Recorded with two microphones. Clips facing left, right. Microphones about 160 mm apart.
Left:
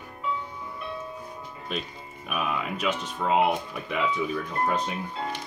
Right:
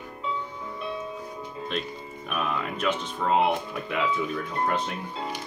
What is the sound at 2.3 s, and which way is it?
Speech, 5° left (ahead or behind).